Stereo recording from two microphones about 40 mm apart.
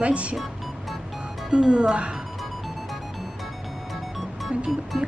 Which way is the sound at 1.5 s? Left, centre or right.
Right.